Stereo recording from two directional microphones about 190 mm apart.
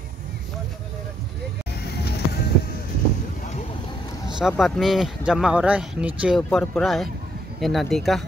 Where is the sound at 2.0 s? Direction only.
55° left (ahead or behind).